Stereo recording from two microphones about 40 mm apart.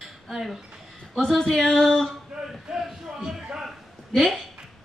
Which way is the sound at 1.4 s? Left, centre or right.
Centre.